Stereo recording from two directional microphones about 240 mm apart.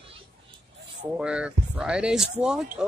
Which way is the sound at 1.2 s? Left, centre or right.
Centre.